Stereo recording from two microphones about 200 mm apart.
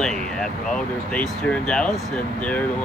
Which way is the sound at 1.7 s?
5° left (ahead or behind).